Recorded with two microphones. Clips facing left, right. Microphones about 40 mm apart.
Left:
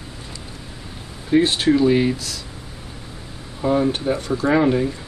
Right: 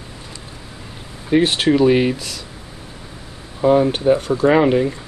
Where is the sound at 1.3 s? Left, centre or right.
Right.